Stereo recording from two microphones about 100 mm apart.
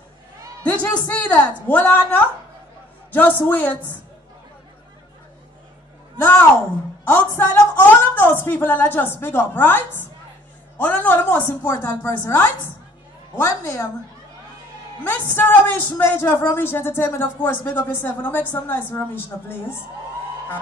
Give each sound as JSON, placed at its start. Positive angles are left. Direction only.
{"t": 0.7, "sound": "a woman's voice", "side_deg": 15}
{"t": 7.1, "sound": "a woman's voice", "side_deg": 20}
{"t": 15.0, "sound": "speech", "side_deg": 20}